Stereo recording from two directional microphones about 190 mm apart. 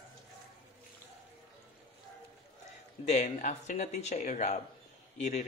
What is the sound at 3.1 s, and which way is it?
Speech, 40° left (ahead or behind).